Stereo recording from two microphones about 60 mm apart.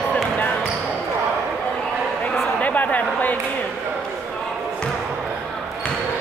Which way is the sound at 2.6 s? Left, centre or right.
Left.